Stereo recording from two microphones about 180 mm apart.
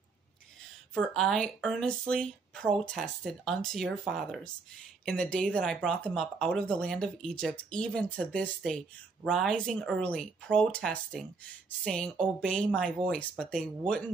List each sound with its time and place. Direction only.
0.9 s speech: 5° left (ahead or behind)